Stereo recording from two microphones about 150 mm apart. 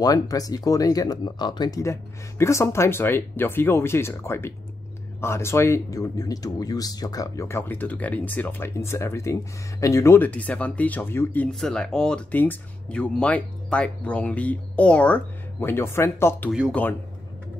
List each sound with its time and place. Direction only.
0.0 s speech: 25° left (ahead or behind)